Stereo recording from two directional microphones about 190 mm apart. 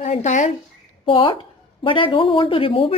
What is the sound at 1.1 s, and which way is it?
Speech, 25° left (ahead or behind).